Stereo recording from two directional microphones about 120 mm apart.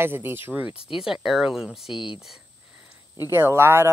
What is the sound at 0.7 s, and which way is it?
Speech, 5° right (ahead or behind).